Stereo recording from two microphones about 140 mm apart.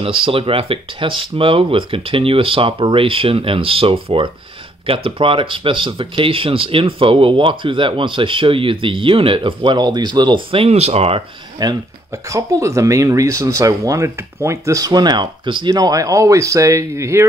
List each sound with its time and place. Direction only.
0.0 s speech: 40° right (ahead or behind)
11.6 s speech: 20° right (ahead or behind)